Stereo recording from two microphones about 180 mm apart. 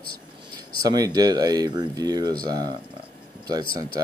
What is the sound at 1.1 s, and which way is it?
Speech, 20° right (ahead or behind).